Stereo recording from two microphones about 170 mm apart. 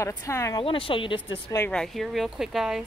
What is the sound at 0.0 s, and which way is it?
Speech, 15° left (ahead or behind).